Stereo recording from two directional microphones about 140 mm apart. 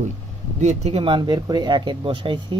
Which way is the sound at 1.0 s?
35° right (ahead or behind).